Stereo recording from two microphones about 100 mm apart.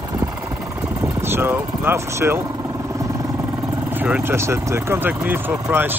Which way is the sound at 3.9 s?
15° right (ahead or behind).